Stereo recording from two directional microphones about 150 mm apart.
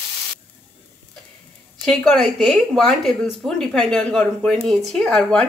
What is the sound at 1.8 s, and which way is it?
A woman's voice, 5° left (ahead or behind).